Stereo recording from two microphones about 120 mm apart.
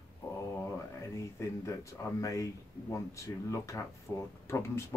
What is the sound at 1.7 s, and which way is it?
Speech, 25° left (ahead or behind).